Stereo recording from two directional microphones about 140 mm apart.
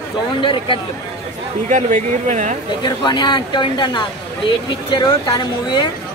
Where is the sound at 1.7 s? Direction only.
65° right (ahead or behind).